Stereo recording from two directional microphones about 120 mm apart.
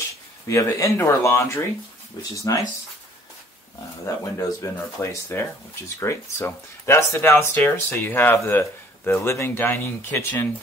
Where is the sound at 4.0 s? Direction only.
25° left (ahead or behind).